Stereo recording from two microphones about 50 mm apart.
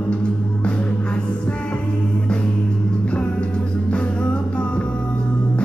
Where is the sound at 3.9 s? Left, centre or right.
Left.